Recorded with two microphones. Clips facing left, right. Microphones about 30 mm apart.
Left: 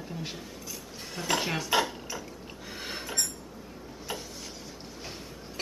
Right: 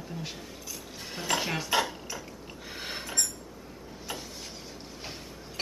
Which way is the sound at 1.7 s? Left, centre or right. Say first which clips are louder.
Left 1 dB; centre.